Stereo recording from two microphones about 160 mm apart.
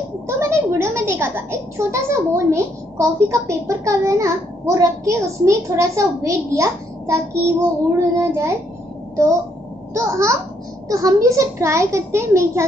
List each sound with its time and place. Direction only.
0.4 s a woman's voice: 15° right (ahead or behind)
9.9 s a child's voice: 20° right (ahead or behind)